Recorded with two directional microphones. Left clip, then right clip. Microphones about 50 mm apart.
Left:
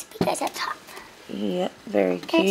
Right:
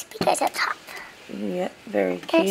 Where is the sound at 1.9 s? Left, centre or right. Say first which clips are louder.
Left 1 dB; left.